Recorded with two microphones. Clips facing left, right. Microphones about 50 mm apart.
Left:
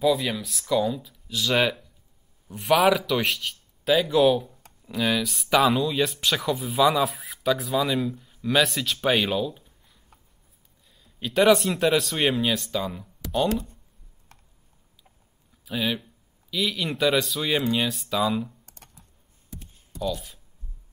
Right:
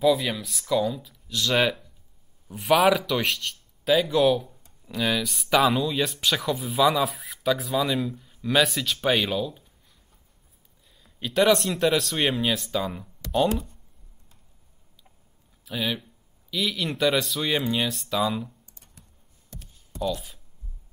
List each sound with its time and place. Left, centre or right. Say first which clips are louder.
0.0 s speech: right 1 dB; centre
9.5 s a sound: left 3 dB; centre
10.9 s speech: left 1 dB; centre
14.3 s a sound: left 10 dB; left
15.6 s speech: left 2 dB; centre
19.5 s music: left 3 dB; centre